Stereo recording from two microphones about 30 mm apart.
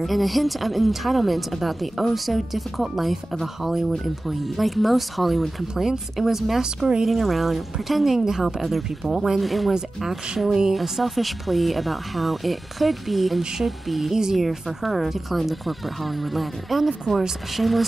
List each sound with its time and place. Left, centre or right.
0.0 s speech: centre
6.6 s speech: right
7.1 s speech: centre
10.5 s speech: centre
10.8 s speech: centre